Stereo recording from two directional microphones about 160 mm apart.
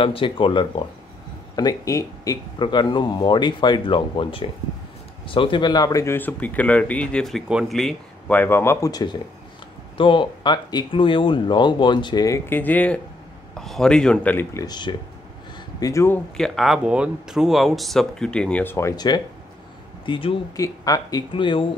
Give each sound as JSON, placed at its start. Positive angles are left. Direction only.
{"t": 0.0, "sound": "speech", "side_deg": 35}
{"t": 12.4, "sound": "speech", "side_deg": 10}
{"t": 16.3, "sound": "speech", "side_deg": 0}
{"t": 20.5, "sound": "speech", "side_deg": 20}